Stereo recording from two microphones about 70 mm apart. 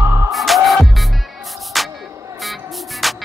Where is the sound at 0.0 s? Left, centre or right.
Right.